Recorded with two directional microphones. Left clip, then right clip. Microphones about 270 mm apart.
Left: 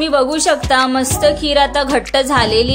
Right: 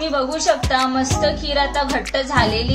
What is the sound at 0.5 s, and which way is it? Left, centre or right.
Speech, centre.